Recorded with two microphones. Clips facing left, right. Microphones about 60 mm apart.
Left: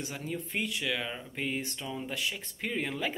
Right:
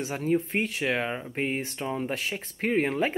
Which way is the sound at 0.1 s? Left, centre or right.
Right.